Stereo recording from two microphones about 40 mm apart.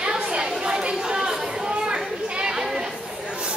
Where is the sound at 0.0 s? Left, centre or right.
Right.